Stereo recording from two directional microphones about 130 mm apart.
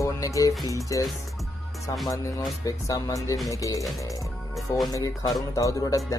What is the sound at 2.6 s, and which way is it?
Speech, 25° left (ahead or behind).